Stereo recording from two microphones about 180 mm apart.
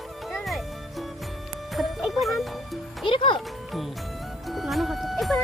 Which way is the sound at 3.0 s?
25° left (ahead or behind).